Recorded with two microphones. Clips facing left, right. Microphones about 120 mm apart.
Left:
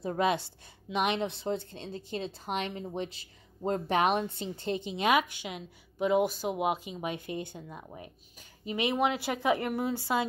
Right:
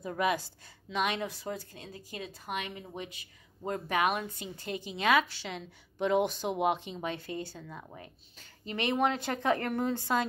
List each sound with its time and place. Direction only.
0.0 s a woman's voice: 30° left (ahead or behind); by 10.2 s 10° left (ahead or behind)